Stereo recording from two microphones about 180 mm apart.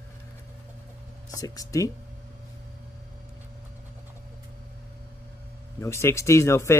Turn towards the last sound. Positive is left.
turn(degrees=15)  # may be behind; listen again after turning